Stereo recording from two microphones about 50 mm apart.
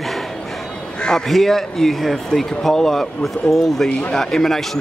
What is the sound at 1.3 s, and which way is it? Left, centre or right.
Speech, centre.